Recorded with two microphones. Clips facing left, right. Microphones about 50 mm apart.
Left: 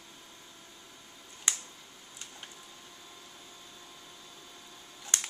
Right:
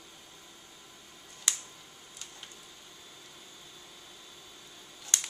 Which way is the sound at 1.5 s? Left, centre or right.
Centre.